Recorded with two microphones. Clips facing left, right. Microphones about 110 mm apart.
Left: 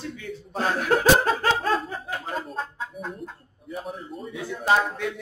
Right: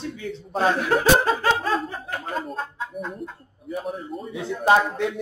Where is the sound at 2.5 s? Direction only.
Centre (ahead or behind).